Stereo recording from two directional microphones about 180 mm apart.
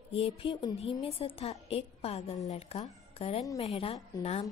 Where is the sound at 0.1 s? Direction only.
30° left (ahead or behind).